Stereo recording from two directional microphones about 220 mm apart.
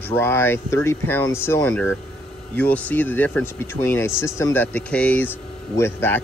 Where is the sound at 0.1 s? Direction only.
10° left (ahead or behind).